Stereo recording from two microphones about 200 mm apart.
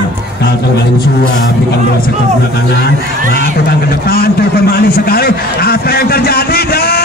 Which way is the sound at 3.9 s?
50° left (ahead or behind).